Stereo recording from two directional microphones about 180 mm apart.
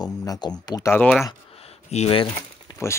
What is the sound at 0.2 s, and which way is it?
Speech, 20° left (ahead or behind).